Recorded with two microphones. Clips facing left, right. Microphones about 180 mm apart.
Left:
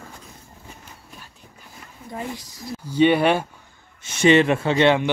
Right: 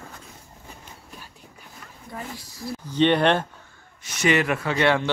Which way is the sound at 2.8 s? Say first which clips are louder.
Left 2 dB; 10° left (ahead or behind).